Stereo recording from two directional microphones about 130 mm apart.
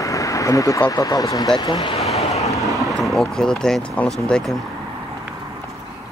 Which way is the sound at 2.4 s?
25° left (ahead or behind).